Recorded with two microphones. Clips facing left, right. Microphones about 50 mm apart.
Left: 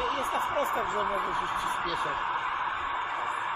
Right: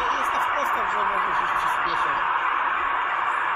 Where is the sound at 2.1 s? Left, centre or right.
Right.